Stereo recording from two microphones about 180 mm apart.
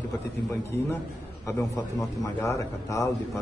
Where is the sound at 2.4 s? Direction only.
15° left (ahead or behind).